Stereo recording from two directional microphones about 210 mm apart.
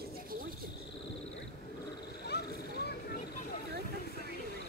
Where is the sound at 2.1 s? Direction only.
50° left (ahead or behind).